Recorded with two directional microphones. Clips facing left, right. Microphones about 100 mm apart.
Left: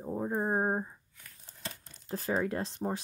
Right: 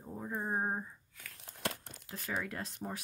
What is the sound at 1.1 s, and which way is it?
Crumpling, 85° right.